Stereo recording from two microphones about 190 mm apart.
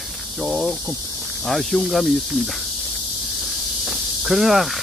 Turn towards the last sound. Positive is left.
turn(degrees=0)  # may be behind; listen again after turning